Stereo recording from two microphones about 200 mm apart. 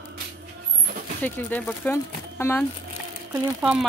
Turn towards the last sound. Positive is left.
turn(degrees=-5)  # may be behind; listen again after turning